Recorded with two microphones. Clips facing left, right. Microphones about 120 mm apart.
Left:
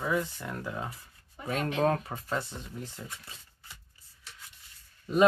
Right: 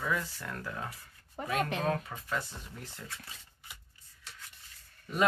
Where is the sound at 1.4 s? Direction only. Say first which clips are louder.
Left 1 dB; 50° right (ahead or behind).